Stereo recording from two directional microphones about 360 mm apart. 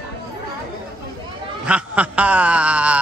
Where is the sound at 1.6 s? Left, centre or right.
Centre.